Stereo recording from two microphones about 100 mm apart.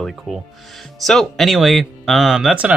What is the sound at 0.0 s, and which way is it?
Speech, centre (ahead or behind).